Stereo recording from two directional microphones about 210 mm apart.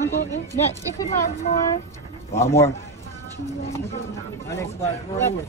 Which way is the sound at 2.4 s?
10° left (ahead or behind).